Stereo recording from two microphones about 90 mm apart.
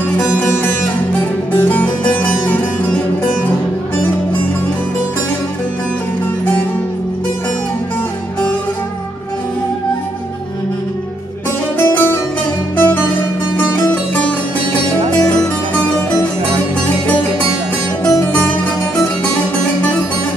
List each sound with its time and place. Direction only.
1.5 s music: 20° left (ahead or behind)
11.8 s music: 25° left (ahead or behind)